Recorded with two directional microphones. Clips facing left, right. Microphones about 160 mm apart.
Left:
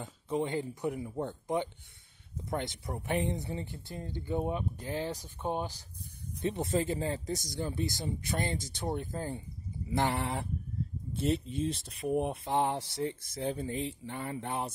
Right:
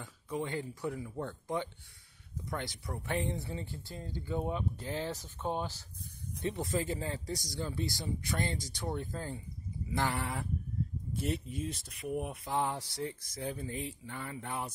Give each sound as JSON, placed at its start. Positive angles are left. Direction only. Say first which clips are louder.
{"t": 0.0, "sound": "speech", "louder": "left 5 dB", "side_deg": 20}